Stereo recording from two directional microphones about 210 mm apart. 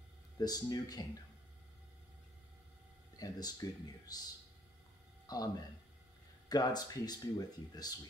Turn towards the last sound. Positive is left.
turn(degrees=20)  # may be behind; listen again after turning